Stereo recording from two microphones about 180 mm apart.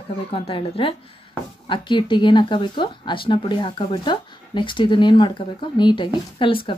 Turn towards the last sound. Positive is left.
turn(degrees=30)  # may be behind; listen again after turning